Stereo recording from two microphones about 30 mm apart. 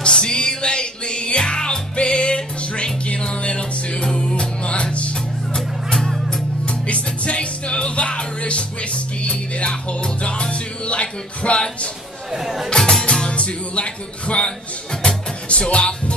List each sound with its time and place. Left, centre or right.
0.0 s music: left
4.1 s music: left
6.6 s music: left
12.3 s speech: centre
12.6 s music: left
13.3 s music: left